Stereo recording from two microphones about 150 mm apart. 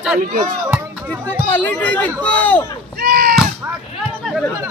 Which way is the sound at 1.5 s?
10° left (ahead or behind).